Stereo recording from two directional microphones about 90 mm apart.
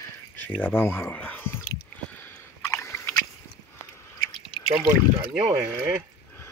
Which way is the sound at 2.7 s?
30° left (ahead or behind).